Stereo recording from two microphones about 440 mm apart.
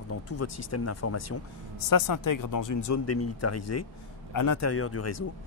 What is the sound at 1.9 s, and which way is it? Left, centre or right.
Speech, left.